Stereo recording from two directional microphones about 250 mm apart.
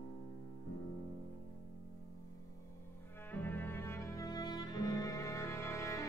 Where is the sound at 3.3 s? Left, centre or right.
Centre.